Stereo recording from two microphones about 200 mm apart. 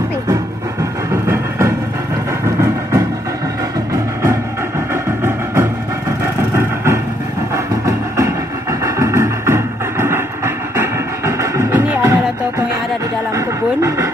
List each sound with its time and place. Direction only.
1.2 s vehicle: 15° right (ahead or behind)
3.9 s music: 15° right (ahead or behind)
7.5 s train: 15° right (ahead or behind)
8.8 s music: 15° right (ahead or behind)
13.7 s a sound: 15° right (ahead or behind)